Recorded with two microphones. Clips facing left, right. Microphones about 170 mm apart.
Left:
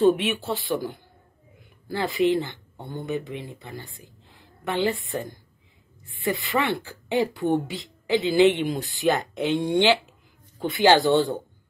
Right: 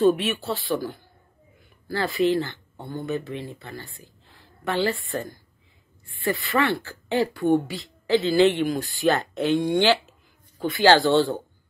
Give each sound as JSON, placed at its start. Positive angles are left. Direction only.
{"t": 0.0, "sound": "speech", "side_deg": 20}